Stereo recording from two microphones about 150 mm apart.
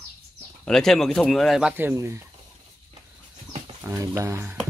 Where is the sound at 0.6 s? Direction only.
5° left (ahead or behind).